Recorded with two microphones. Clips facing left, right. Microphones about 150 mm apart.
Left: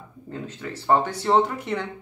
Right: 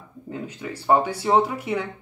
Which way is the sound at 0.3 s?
10° right (ahead or behind).